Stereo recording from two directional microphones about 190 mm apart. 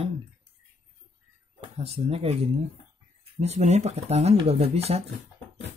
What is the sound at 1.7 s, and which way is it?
Speech, 30° right (ahead or behind).